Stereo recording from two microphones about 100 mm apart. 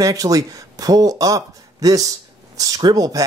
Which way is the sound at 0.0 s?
35° right (ahead or behind).